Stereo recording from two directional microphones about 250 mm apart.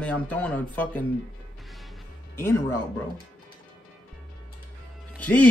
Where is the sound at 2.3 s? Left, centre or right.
Centre.